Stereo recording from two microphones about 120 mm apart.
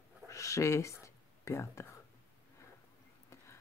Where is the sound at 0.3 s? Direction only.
25° left (ahead or behind).